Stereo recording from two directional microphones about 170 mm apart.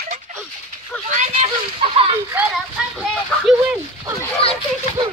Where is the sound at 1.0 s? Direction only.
45° right (ahead or behind).